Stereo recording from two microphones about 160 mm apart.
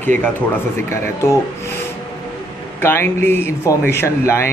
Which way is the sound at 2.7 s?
15° left (ahead or behind).